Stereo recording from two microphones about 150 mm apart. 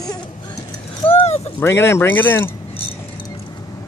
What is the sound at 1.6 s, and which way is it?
Speech, 15° left (ahead or behind).